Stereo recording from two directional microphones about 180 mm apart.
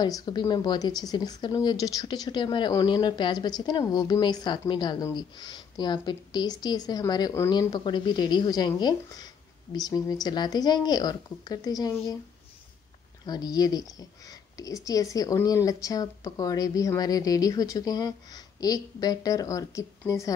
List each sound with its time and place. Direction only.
0.0 s speech: 25° left (ahead or behind)
13.2 s speech: 20° left (ahead or behind)